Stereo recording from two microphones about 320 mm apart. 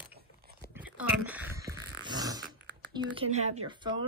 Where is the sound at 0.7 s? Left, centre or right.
Centre.